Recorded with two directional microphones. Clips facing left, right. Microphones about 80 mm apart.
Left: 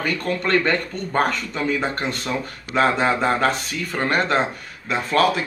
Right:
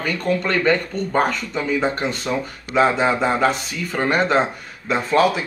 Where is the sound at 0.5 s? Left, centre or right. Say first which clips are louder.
Left 2 dB; centre.